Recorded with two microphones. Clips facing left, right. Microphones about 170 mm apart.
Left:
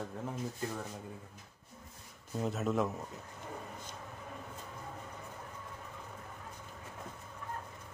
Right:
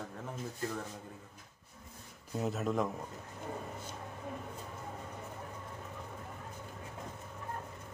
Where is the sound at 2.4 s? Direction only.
Centre (ahead or behind).